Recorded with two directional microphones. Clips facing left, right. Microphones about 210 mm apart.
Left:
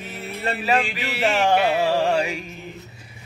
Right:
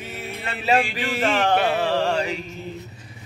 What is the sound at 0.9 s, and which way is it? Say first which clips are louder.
Speech: right 3 dB; 45° right (ahead or behind).